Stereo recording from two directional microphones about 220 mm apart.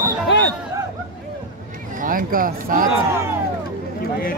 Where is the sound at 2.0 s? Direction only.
40° right (ahead or behind).